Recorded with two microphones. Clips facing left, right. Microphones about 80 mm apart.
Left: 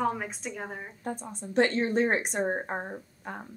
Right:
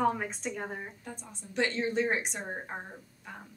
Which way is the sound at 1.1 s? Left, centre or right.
Left.